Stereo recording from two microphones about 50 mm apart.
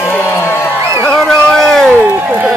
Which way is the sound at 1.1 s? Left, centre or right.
Centre.